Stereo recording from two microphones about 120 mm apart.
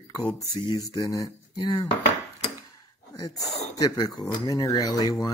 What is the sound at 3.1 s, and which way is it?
Speech, 30° left (ahead or behind).